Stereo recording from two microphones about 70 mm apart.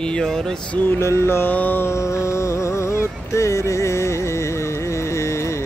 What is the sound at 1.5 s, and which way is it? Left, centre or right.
Mantra, left.